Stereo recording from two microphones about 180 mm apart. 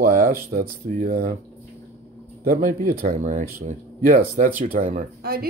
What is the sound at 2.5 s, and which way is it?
Speech, 50° right (ahead or behind).